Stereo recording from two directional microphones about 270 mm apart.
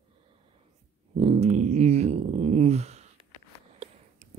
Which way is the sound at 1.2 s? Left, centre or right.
Right.